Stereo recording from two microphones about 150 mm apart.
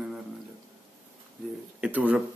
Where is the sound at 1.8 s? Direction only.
10° right (ahead or behind).